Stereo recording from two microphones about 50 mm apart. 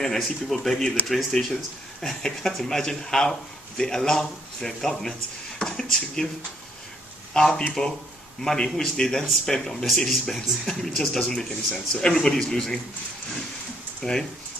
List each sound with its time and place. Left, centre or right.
0.0 s speech: centre
7.3 s speech: centre
14.0 s speech: centre